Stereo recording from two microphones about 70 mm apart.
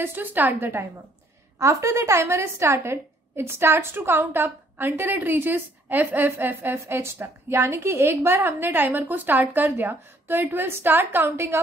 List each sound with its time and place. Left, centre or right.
0.0 s a woman's voice: right
1.6 s a woman's voice: right